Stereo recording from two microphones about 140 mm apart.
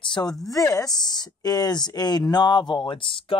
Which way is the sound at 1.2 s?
25° left (ahead or behind).